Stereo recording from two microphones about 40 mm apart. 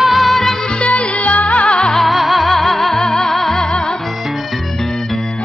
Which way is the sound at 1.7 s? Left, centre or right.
Centre.